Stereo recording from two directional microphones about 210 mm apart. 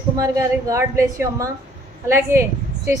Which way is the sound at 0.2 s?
15° right (ahead or behind).